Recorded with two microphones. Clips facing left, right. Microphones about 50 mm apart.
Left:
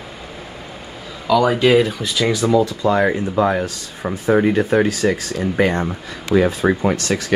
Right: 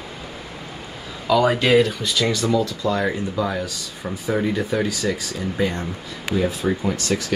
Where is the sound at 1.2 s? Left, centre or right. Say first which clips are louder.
Left 3 dB; centre; by 4.8 s left.